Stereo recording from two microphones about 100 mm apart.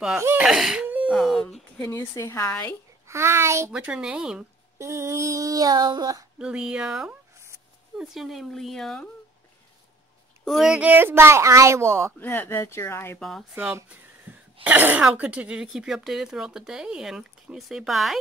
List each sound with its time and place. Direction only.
0.4 s speech: 5° right (ahead or behind)
0.8 s wail: 15° right (ahead or behind)
1.1 s speech: 5° right (ahead or behind)
1.8 s speech: 30° left (ahead or behind)
3.1 s speech: 25° right (ahead or behind)
3.7 s speech: 5° right (ahead or behind)
4.7 s child singing: 30° right (ahead or behind)
6.3 s speech: 10° right (ahead or behind)
10.4 s speech: centre (ahead or behind)
10.8 s speech: 20° right (ahead or behind)
12.2 s speech: 20° left (ahead or behind)
13.6 s speech: 20° right (ahead or behind)
14.3 s cough: 15° right (ahead or behind)
14.6 s speech: 15° right (ahead or behind)